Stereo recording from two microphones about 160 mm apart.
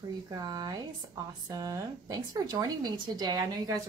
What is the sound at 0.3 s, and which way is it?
Speech, 25° right (ahead or behind).